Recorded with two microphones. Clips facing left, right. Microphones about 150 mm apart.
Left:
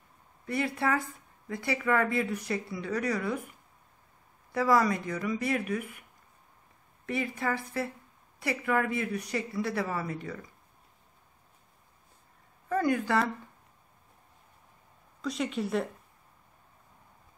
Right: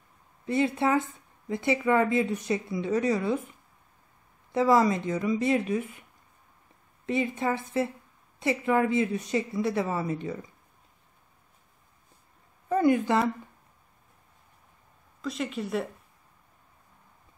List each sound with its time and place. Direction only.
0.5 s speech: 20° right (ahead or behind)
7.1 s speech: 20° right (ahead or behind)
12.6 s a woman's voice: 20° right (ahead or behind)
15.2 s speech: centre (ahead or behind)